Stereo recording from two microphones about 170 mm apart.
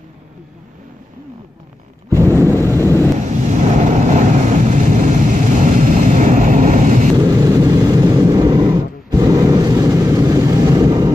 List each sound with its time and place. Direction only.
2.5 s vehicle: 15° left (ahead or behind)
3.2 s vehicle: 45° right (ahead or behind)
7.2 s vehicle: 20° right (ahead or behind)